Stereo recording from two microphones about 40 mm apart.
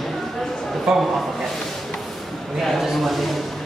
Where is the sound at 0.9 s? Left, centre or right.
Centre.